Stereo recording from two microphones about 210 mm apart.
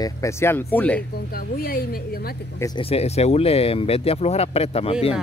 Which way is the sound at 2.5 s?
15° left (ahead or behind).